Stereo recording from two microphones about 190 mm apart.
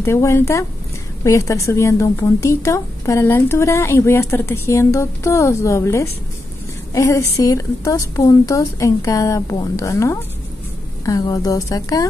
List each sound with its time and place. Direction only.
0.0 s a woman's voice: 15° left (ahead or behind)